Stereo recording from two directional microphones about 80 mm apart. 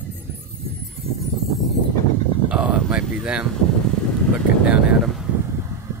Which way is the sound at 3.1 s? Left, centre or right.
Centre.